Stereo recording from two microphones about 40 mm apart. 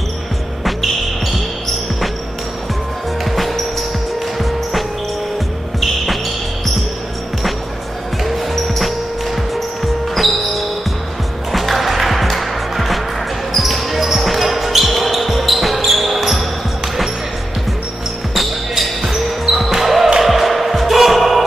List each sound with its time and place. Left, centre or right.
3.3 s music: centre
8.2 s music: centre
10.1 s basketball bounce: centre
11.5 s music: centre
13.5 s basketball bounce: centre
18.3 s basketball bounce: centre
20.2 s music: centre